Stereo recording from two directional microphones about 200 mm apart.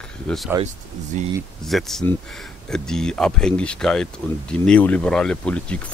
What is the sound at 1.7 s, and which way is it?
Speech, centre (ahead or behind).